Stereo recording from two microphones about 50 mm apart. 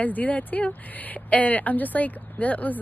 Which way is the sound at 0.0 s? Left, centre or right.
Left.